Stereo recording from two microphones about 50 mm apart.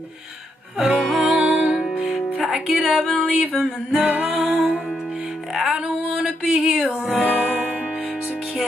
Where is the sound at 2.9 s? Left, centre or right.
Centre.